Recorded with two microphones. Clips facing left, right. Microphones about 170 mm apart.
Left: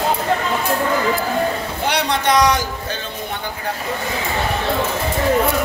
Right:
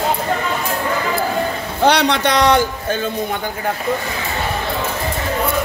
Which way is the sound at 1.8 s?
80° right.